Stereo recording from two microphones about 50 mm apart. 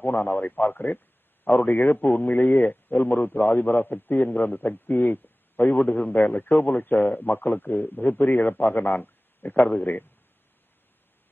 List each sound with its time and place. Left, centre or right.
0.0 s a man's voice: left